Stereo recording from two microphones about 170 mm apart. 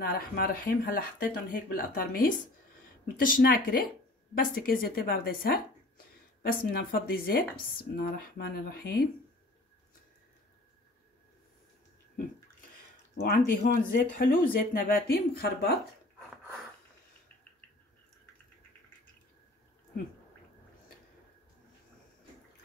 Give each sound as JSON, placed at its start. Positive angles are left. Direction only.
{"t": 0.0, "sound": "speech", "side_deg": 60}
{"t": 13.2, "sound": "speech", "side_deg": 60}